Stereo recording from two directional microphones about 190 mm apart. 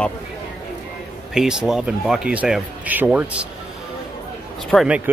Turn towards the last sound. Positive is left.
turn(degrees=-5)  # may be behind; listen again after turning